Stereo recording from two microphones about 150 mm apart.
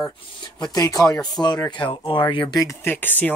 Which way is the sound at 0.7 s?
20° left (ahead or behind).